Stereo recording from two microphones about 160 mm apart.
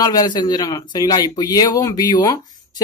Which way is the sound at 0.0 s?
25° left (ahead or behind).